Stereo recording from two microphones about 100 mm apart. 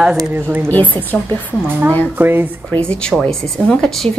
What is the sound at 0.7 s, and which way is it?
Speech, 15° left (ahead or behind).